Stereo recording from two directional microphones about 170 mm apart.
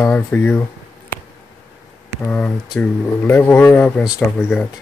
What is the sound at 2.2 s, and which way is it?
Speech, 5° left (ahead or behind).